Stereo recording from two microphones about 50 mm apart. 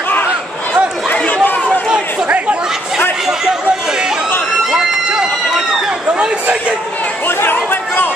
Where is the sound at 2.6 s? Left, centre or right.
Centre.